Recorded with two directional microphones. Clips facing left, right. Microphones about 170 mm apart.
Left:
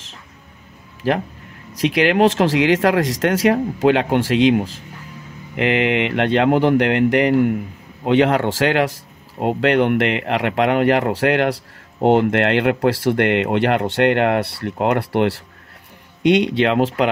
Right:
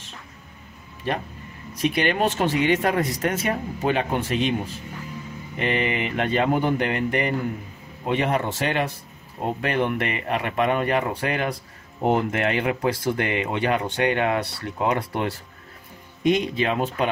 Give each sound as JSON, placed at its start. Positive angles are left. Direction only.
{"t": 1.7, "sound": "speech", "side_deg": 90}
{"t": 16.2, "sound": "speech", "side_deg": 80}